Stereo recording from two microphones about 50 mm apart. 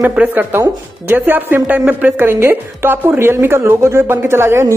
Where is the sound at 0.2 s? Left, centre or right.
Right.